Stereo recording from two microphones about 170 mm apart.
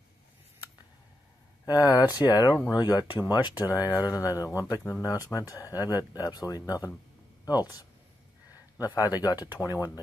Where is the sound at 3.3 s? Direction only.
25° left (ahead or behind).